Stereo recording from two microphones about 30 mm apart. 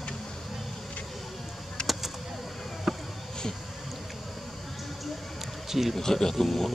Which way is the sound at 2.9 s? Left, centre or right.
Centre.